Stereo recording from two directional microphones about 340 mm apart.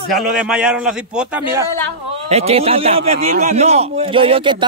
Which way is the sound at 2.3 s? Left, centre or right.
Centre.